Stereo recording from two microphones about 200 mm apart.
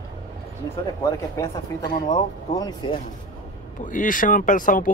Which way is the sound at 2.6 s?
20° left (ahead or behind).